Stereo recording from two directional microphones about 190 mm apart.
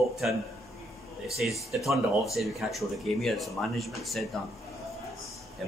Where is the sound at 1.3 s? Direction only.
Centre (ahead or behind).